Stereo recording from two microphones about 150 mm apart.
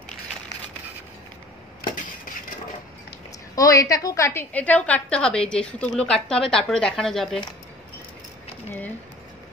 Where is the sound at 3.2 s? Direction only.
25° left (ahead or behind); by 7.4 s 5° left (ahead or behind).